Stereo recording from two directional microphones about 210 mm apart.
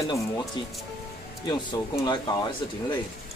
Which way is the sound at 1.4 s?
20° left (ahead or behind).